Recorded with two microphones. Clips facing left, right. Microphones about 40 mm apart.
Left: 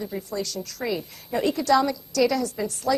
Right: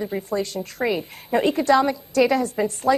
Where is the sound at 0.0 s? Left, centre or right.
Right.